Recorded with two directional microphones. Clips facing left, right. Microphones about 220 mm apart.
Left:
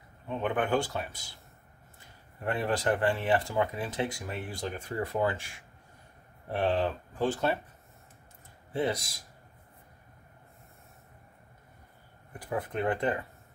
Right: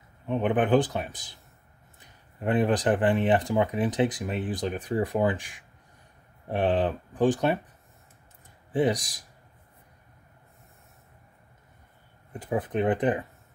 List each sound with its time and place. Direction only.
0.3 s speech: 20° right (ahead or behind)
8.7 s speech: 15° right (ahead or behind)
12.3 s speech: 20° right (ahead or behind)